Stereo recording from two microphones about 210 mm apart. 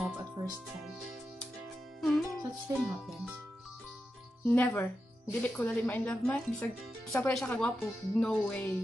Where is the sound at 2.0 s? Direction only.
Centre (ahead or behind).